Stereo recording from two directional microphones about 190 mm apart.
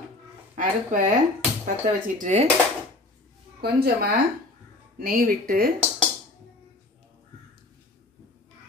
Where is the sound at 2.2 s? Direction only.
35° right (ahead or behind).